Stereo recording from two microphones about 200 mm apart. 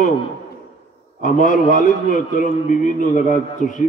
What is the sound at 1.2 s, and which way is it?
A man's voice, 40° left (ahead or behind).